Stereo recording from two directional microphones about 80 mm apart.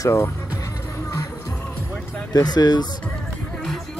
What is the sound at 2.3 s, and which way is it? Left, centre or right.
Speech, left.